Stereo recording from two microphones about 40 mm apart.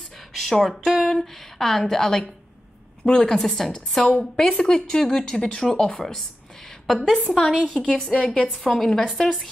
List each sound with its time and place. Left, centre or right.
0.4 s a woman's voice: centre
4.1 s a woman's voice: left; by 7.8 s centre
8.3 s a woman's voice: left
8.6 s speech: centre